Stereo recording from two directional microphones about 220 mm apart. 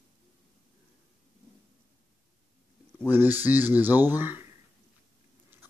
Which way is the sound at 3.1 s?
10° right (ahead or behind).